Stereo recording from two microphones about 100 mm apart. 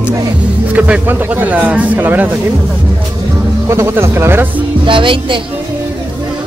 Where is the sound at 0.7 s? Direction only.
15° right (ahead or behind).